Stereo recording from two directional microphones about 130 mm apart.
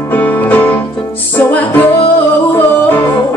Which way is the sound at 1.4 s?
10° left (ahead or behind).